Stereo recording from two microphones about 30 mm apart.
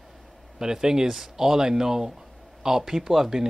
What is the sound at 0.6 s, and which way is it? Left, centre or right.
Speech, right.